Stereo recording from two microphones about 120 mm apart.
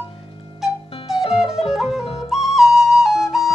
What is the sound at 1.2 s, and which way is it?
Music, 50° left (ahead or behind).